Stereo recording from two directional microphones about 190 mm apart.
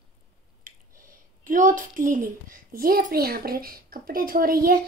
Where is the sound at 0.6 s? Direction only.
45° right (ahead or behind).